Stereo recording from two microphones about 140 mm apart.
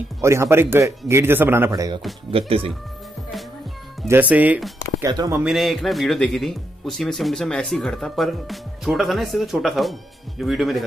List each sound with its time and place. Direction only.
0.2 s a man's voice: 20° right (ahead or behind)
2.3 s speech: 45° right (ahead or behind)
4.1 s speech: 10° right (ahead or behind)
5.1 s a man's voice: 25° right (ahead or behind)
5.4 s speech: centre (ahead or behind)